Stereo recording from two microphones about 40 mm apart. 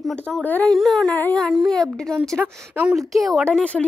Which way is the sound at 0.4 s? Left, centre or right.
Left.